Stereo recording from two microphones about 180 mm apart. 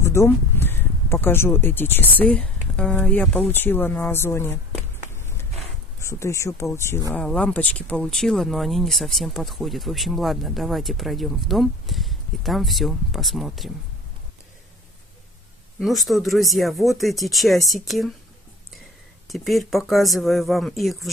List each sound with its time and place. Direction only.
0.0 s speech: 15° left (ahead or behind)
5.1 s a sound: 15° left (ahead or behind)
5.9 s speech: 15° left (ahead or behind); by 13.7 s centre (ahead or behind)
15.8 s speech: centre (ahead or behind)
19.2 s speech: centre (ahead or behind)